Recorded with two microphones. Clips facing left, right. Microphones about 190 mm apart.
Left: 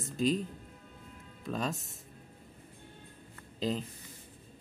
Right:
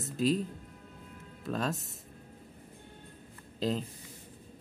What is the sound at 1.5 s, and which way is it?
Speech, centre (ahead or behind).